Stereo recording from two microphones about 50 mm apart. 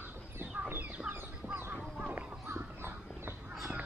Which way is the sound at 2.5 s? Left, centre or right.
Right.